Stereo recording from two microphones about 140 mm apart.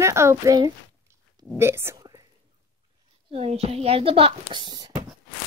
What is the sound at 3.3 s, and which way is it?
Speech, 50° right (ahead or behind).